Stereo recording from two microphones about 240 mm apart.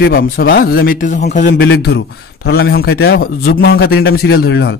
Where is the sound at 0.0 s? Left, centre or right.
Left.